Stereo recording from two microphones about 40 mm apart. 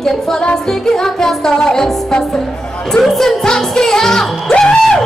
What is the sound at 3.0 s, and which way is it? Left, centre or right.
Speech, centre.